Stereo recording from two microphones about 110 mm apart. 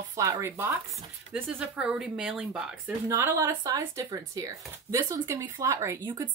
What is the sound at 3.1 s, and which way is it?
Speech, 25° right (ahead or behind).